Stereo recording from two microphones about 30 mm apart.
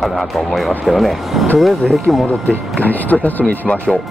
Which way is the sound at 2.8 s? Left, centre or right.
Left.